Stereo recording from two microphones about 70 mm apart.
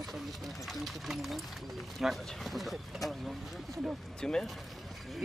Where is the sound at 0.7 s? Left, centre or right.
Centre.